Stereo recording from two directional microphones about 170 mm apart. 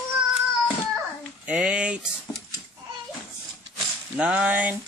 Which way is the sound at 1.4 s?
5° right (ahead or behind).